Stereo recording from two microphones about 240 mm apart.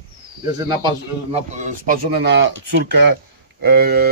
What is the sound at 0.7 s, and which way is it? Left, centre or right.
Speech, right.